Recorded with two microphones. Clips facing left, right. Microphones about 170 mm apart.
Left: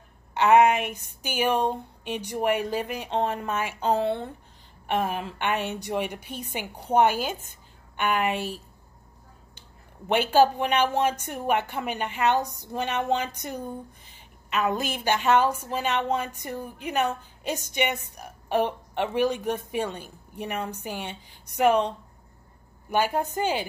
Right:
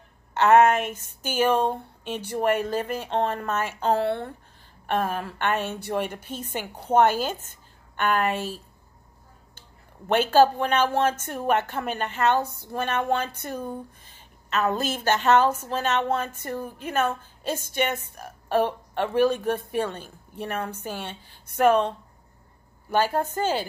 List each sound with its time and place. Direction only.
0.3 s a woman's voice: 10° left (ahead or behind)
9.6 s a woman's voice: 15° left (ahead or behind)